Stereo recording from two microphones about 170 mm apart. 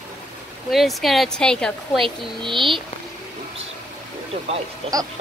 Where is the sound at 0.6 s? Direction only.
Centre (ahead or behind).